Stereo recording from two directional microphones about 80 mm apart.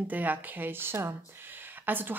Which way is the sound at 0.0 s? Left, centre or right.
Right.